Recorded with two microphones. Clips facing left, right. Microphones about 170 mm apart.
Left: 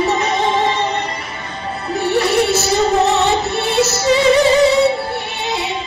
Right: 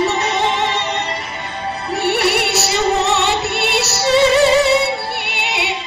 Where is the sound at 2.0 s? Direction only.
70° right (ahead or behind).